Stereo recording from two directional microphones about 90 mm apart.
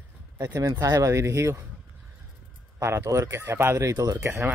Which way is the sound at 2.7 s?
30° right (ahead or behind).